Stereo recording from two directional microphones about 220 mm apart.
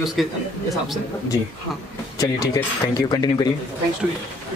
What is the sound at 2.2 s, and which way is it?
Speech, 15° left (ahead or behind).